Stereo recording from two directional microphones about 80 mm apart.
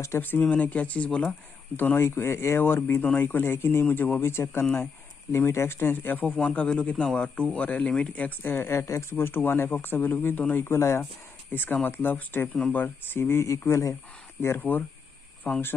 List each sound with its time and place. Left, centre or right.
0.2 s speech: centre
1.8 s speech: left
6.2 s speech: centre
8.6 s speech: left
11.5 s speech: left
14.6 s speech: left